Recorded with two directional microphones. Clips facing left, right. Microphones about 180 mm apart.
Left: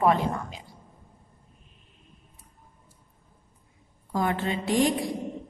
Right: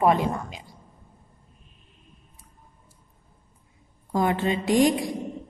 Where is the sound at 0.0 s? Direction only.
15° right (ahead or behind).